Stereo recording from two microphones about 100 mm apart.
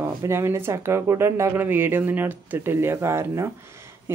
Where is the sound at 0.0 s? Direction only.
30° right (ahead or behind).